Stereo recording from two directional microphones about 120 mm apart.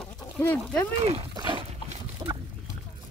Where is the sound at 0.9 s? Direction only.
55° right (ahead or behind).